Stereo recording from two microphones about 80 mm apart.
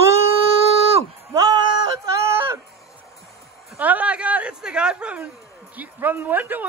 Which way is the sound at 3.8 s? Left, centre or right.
Centre.